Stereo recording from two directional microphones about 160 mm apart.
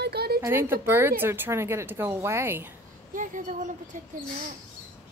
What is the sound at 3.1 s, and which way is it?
Speech, 55° right (ahead or behind).